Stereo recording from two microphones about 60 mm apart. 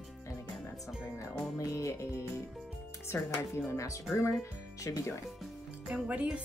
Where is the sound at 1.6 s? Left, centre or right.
Left.